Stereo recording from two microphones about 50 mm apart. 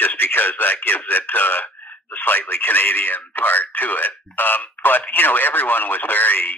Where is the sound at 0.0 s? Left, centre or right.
Left.